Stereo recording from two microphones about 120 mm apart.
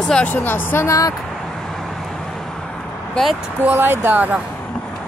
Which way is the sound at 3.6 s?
15° right (ahead or behind).